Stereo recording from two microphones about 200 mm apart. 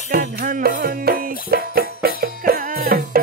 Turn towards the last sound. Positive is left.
turn(degrees=-45)  # may be behind; listen again after turning